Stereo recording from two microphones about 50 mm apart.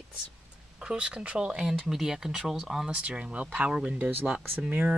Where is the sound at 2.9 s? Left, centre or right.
Right.